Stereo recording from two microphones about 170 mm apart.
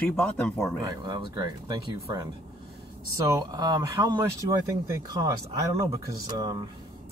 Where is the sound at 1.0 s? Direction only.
25° right (ahead or behind).